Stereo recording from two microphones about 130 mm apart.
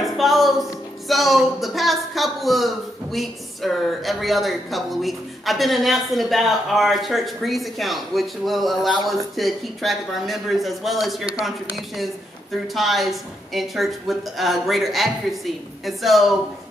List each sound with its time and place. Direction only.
0.0 s speech: centre (ahead or behind)
12.7 s speech: centre (ahead or behind)